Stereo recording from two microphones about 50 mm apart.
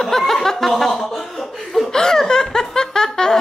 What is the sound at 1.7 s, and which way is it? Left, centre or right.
Laughter, centre.